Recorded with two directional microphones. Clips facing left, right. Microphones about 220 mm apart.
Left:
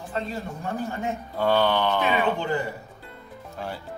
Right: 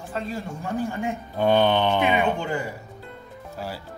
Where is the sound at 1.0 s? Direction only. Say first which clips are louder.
Even; 20° right (ahead or behind).